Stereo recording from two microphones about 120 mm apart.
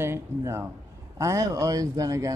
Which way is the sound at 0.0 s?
20° right (ahead or behind).